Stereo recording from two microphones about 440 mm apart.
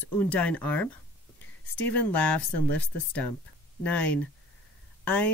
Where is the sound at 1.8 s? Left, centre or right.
Left.